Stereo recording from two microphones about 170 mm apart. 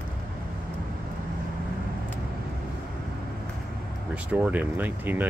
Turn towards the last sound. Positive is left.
turn(degrees=-10)  # may be behind; listen again after turning